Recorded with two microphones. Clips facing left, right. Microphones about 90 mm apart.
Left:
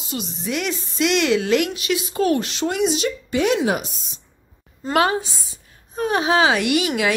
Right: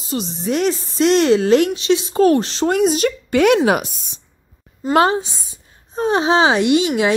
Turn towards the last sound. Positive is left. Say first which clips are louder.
# right 5 dB
turn(degrees=-25)  # may be behind; listen again after turning